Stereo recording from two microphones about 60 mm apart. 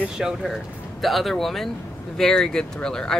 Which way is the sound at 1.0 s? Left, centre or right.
Centre.